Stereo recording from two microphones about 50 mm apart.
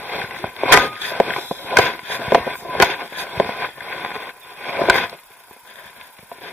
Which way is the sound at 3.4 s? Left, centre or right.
Right.